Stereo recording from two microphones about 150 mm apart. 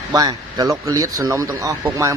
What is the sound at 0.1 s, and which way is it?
A man's voice, 25° right (ahead or behind).